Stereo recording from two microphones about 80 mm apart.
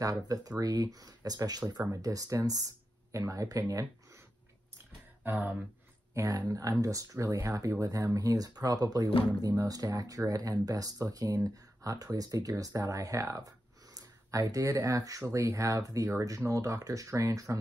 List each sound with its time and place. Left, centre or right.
0.0 s speech: right
5.2 s a sound: right
6.1 s speech: right